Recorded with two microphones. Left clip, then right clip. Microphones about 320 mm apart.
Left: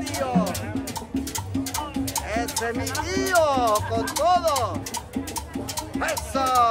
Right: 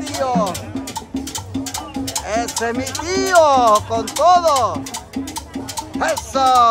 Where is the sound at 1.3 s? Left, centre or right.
Centre.